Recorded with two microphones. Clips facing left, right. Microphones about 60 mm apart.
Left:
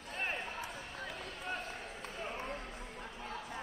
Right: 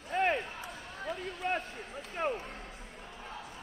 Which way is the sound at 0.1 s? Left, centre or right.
Right.